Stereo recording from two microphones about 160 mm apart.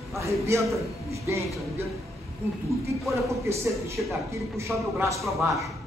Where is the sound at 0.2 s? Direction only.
20° right (ahead or behind).